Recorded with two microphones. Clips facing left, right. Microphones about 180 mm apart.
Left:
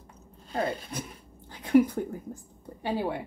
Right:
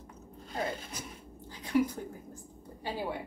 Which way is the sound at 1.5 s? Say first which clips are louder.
Left 9 dB; 60° left (ahead or behind).